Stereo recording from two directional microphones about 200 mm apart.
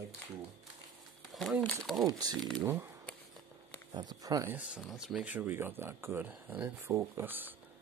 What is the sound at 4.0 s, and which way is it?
Speech, 20° right (ahead or behind).